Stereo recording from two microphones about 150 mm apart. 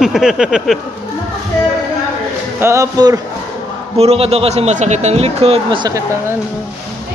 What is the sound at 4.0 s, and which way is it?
A man's voice, 45° right (ahead or behind).